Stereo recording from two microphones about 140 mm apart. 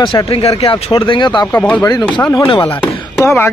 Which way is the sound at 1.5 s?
15° left (ahead or behind).